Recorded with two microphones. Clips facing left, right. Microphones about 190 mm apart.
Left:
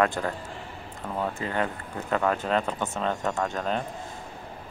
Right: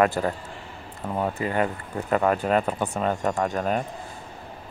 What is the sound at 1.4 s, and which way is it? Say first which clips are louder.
Speech: right 4 dB; 10° right (ahead or behind).